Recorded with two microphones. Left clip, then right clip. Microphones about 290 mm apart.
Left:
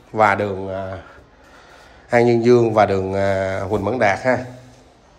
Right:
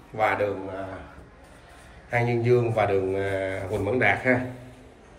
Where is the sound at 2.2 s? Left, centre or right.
Left.